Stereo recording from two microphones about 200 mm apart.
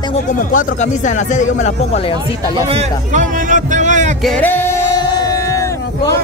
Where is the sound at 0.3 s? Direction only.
40° left (ahead or behind).